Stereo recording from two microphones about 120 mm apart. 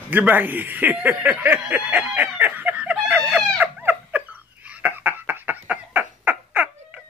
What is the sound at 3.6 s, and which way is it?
Cat, 15° right (ahead or behind).